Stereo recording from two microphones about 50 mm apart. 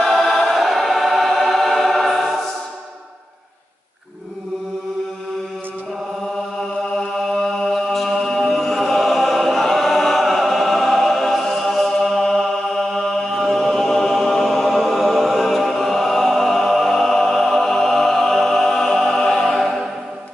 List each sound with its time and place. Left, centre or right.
0.0 s choir: centre
7.0 s chant: centre